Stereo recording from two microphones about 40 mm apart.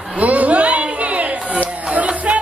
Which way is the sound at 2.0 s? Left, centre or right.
Right.